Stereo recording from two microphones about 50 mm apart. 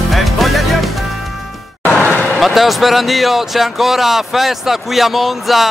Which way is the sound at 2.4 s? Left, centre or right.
Centre.